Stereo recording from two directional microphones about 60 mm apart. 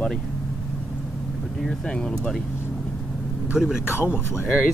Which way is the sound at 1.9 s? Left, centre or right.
Centre.